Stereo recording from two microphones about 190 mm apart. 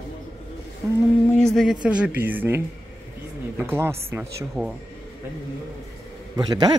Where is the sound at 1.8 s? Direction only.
5° right (ahead or behind).